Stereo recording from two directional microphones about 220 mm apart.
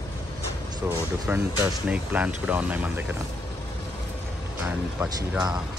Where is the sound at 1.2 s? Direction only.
5° right (ahead or behind).